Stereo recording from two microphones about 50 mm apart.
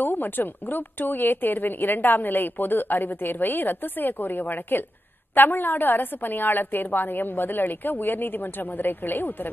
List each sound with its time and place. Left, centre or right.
0.0 s speech: left